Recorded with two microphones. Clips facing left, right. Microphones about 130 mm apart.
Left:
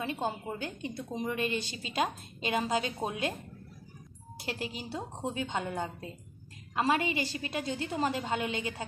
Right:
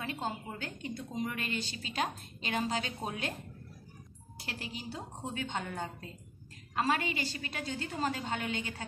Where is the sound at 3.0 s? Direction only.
40° left (ahead or behind).